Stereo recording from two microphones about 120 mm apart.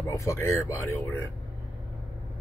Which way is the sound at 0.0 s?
25° left (ahead or behind).